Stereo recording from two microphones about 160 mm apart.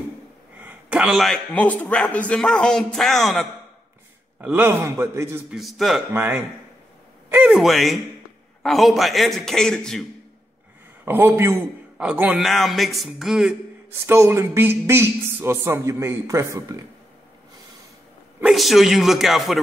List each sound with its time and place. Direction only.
0.6 s a man's voice: 10° right (ahead or behind)
4.4 s a man's voice: 10° right (ahead or behind)
5.5 s a man's voice: centre (ahead or behind)
6.1 s a man's voice: 15° right (ahead or behind)
7.5 s a man's voice: centre (ahead or behind)
11.1 s a man's voice: 15° right (ahead or behind)
14.0 s a man's voice: 15° right (ahead or behind)
18.4 s a man's voice: centre (ahead or behind)